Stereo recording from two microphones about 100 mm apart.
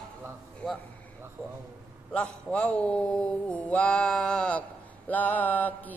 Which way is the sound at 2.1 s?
10° left (ahead or behind).